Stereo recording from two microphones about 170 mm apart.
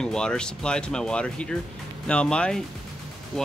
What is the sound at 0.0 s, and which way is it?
Speech, 5° left (ahead or behind).